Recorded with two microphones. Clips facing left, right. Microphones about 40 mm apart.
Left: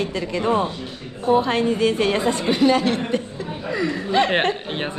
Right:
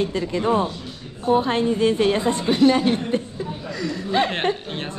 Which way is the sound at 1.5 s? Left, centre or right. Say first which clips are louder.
Left 1 dB; left.